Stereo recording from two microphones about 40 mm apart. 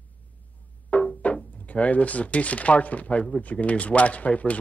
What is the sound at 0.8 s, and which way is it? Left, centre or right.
Speech, left.